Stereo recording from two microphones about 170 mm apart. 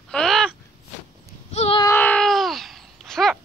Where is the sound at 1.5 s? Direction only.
35° left (ahead or behind).